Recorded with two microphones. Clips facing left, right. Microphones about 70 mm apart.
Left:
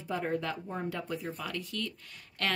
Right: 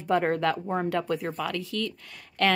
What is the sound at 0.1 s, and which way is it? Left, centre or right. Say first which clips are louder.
Speech: right 9 dB; right.